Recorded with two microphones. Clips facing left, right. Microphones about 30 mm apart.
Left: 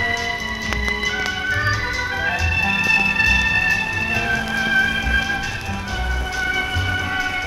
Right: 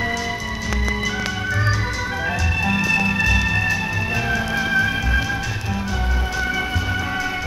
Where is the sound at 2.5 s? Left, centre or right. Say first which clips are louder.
Left 2 dB; left.